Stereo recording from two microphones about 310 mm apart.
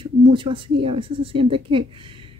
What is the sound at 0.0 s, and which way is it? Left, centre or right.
Speech, centre.